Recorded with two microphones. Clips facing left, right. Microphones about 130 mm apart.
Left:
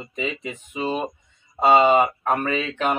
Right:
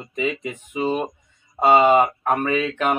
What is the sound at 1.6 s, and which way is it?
Speech, 15° right (ahead or behind).